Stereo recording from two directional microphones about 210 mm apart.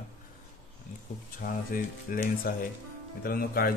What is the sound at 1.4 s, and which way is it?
Speech, 45° left (ahead or behind).